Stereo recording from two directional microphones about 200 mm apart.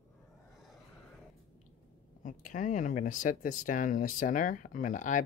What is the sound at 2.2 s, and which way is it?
Speech, 40° left (ahead or behind).